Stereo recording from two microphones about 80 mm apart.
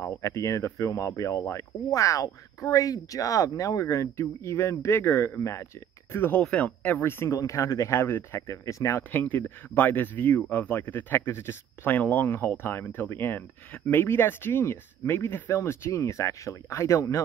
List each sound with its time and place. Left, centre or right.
0.0 s speech: left
6.1 s speech: left
6.4 s speech: centre
7.0 s speech: left
7.3 s speech: left
9.1 s speech: left